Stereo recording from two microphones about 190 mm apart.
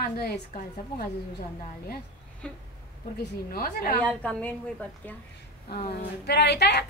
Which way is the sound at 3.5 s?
50° left (ahead or behind).